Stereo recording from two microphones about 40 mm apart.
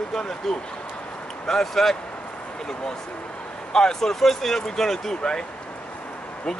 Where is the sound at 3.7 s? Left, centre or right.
Centre.